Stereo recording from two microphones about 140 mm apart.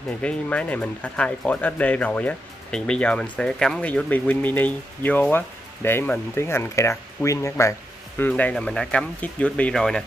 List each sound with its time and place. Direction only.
0.2 s speech: 10° left (ahead or behind)
8.2 s speech: 10° left (ahead or behind)